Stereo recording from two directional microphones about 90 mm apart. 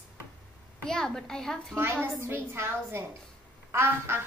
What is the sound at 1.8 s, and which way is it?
A woman's voice, 30° right (ahead or behind).